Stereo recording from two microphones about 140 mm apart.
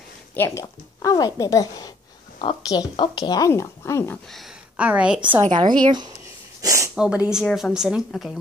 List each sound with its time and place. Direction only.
0.4 s speech: 25° left (ahead or behind)
4.3 s a woman's voice: 5° right (ahead or behind)
5.5 s speech: 35° right (ahead or behind)
6.6 s a sound: 20° right (ahead or behind)
7.0 s speech: 5° right (ahead or behind)